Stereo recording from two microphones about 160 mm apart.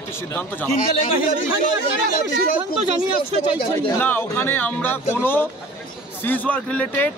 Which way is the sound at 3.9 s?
10° left (ahead or behind).